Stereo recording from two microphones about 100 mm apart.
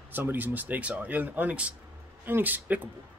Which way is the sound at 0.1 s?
20° right (ahead or behind).